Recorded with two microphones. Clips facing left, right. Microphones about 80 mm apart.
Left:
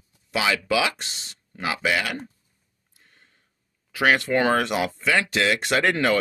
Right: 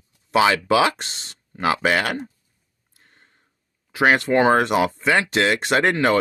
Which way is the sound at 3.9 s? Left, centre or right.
Right.